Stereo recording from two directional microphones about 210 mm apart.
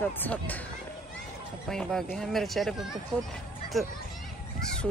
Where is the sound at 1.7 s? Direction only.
Centre (ahead or behind).